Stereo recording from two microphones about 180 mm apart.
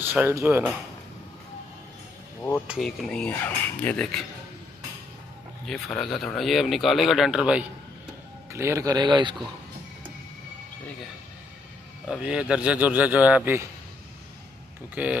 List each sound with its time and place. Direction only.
0.1 s a man's voice: 10° right (ahead or behind)
2.7 s speech: centre (ahead or behind)
5.7 s speech: centre (ahead or behind)
8.5 s speech: 15° right (ahead or behind)
12.1 s a man's voice: 5° right (ahead or behind)
15.0 s a man's voice: 10° right (ahead or behind)